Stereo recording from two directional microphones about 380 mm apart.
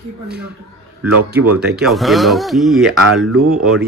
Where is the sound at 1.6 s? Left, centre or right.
Centre.